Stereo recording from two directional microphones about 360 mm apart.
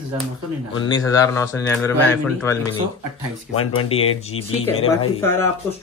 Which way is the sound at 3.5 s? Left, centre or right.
Left.